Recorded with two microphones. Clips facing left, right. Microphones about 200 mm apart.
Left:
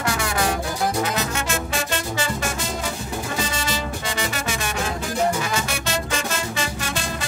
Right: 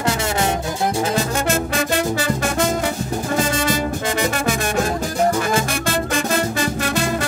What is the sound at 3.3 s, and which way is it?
Music, 50° right (ahead or behind).